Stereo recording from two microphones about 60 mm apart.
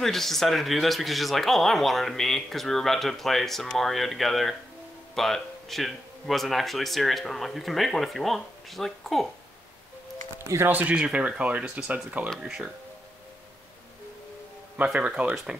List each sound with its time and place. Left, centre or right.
0.0 s speech: centre
10.7 s speech: right
11.0 s speech: centre
12.4 s speech: centre
15.0 s speech: right